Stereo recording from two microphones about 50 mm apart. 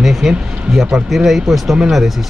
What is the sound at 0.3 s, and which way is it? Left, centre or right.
Speech, centre.